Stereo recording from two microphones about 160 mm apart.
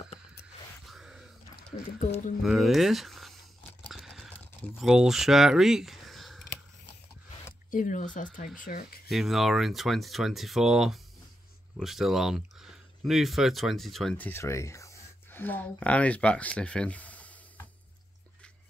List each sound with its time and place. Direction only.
0.8 s a sound: centre (ahead or behind)
2.0 s speech: 50° left (ahead or behind)
2.4 s speech: centre (ahead or behind)
3.8 s a sound: centre (ahead or behind)
4.7 s speech: 5° right (ahead or behind)
7.7 s speech: 55° left (ahead or behind)
9.1 s speech: centre (ahead or behind)